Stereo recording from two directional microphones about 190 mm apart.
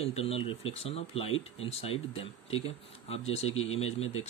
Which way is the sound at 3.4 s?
90° left.